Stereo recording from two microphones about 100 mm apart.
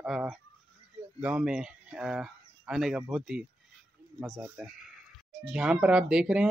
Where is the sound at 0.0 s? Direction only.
5° right (ahead or behind).